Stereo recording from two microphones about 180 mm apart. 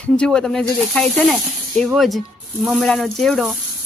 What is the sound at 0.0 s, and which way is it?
A woman's voice, 5° left (ahead or behind).